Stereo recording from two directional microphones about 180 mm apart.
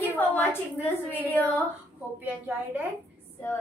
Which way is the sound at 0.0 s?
10° left (ahead or behind).